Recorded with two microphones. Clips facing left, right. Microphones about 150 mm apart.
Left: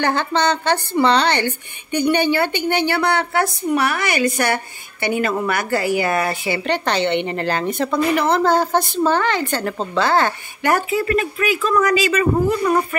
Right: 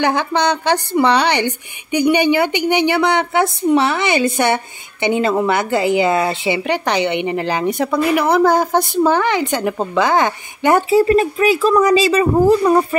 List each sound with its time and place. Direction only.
0.0 s a woman's voice: 15° right (ahead or behind)
10.9 s speech: 30° right (ahead or behind)